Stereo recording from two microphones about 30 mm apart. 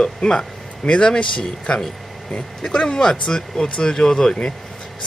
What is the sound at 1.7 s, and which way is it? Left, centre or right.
Speech, left.